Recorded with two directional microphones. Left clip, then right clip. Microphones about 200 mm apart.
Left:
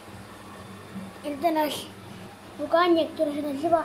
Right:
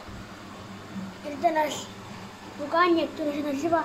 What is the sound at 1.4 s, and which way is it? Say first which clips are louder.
A child's voice: right 1 dB; 10° left (ahead or behind).